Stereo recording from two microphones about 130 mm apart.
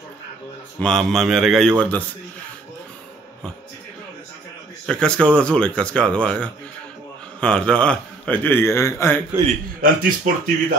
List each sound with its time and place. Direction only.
0.7 s a man's voice: 5° left (ahead or behind)
4.8 s a man's voice: 5° left (ahead or behind)
9.8 s speech: 90° right